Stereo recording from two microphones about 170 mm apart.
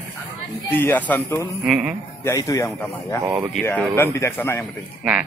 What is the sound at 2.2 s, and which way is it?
Speech, 20° left (ahead or behind).